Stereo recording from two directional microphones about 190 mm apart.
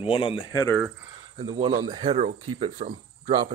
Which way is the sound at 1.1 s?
25° right (ahead or behind).